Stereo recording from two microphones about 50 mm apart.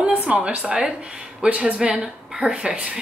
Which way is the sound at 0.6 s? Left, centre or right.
Centre.